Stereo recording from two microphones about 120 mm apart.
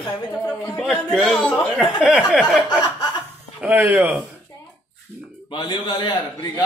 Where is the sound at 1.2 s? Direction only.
Centre (ahead or behind).